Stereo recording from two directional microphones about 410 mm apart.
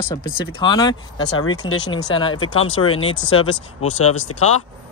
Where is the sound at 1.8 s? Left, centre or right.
Centre.